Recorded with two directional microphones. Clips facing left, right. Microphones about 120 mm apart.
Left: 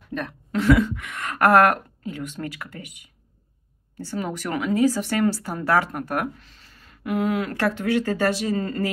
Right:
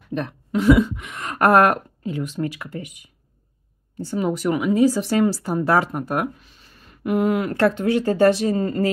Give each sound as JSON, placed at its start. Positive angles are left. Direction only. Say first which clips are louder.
{"t": 0.1, "sound": "speech", "louder": "right 4 dB", "side_deg": -25}
{"t": 0.5, "sound": "speech", "louder": "right 3 dB", "side_deg": -15}
{"t": 2.4, "sound": "speech", "louder": "right 8 dB", "side_deg": -10}
{"t": 4.0, "sound": "speech", "louder": "right 6 dB", "side_deg": -15}